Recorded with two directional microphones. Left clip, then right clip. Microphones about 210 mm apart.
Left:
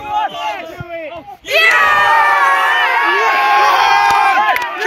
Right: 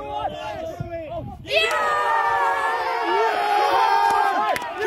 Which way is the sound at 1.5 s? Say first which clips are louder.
Left 10 dB; 25° left (ahead or behind).